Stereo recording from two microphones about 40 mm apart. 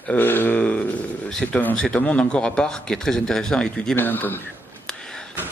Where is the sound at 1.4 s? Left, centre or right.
Centre.